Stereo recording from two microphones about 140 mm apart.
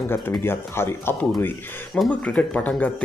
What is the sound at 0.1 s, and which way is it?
Speech, 15° left (ahead or behind).